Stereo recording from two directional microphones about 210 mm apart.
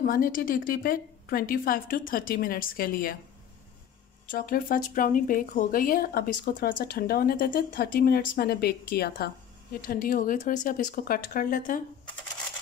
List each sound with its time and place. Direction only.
0.0 s speech: 40° left (ahead or behind)
4.3 s speech: 45° left (ahead or behind)